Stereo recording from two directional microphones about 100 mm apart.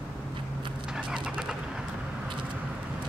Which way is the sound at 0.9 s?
5° right (ahead or behind).